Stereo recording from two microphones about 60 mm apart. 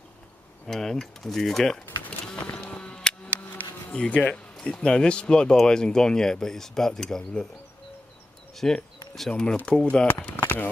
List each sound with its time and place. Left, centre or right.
0.7 s speech: centre
2.0 s music: centre
3.3 s bee: left
3.9 s speech: centre
8.5 s speech: centre
10.0 s a sound: left